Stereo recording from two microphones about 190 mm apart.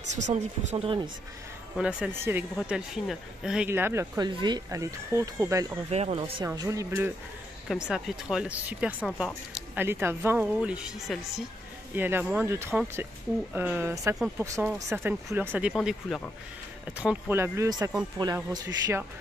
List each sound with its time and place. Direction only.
0.1 s speech: 40° right (ahead or behind)
1.8 s speech: 5° right (ahead or behind)
5.9 s speech: 35° right (ahead or behind); by 7.2 s 10° right (ahead or behind)
7.6 s speech: centre (ahead or behind)